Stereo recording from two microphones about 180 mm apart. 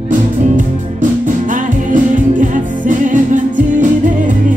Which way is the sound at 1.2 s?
45° right (ahead or behind).